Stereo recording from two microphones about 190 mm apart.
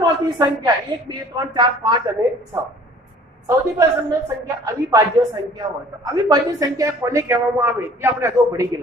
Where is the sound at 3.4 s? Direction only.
15° right (ahead or behind).